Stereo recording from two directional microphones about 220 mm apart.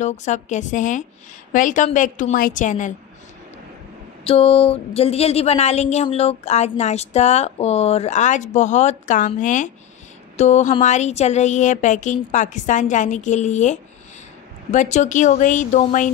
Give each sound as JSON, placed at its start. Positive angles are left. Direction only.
{"t": 0.0, "sound": "speech", "side_deg": 30}
{"t": 4.2, "sound": "speech", "side_deg": 25}